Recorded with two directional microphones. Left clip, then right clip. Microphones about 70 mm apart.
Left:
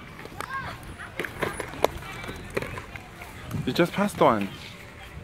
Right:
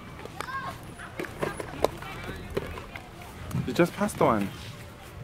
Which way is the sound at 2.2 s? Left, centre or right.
Left.